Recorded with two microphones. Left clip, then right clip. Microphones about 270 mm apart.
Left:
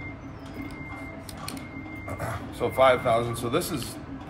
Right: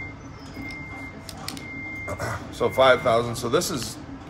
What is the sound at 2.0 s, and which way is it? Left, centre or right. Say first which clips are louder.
Speech: right 1 dB; right.